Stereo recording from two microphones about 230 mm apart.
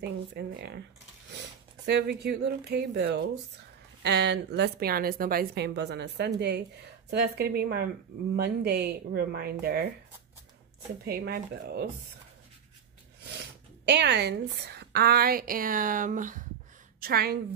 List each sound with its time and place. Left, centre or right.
0.3 s a woman's voice: right
1.9 s a woman's voice: right
11.1 s a woman's voice: right
13.8 s a woman's voice: right